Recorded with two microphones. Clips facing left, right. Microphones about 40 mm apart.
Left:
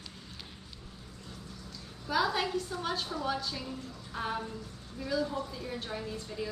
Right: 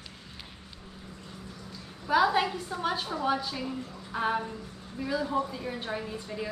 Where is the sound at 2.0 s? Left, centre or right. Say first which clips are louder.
Right 6 dB; centre.